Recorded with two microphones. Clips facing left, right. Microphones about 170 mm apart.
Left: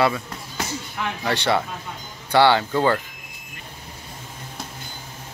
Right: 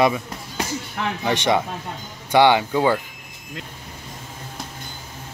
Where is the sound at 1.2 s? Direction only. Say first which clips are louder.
Right 2 dB; 15° right (ahead or behind).